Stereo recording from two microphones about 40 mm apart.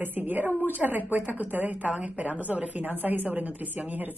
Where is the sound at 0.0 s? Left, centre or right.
Right.